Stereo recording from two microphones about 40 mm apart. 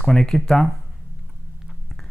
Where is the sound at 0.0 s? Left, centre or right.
Centre.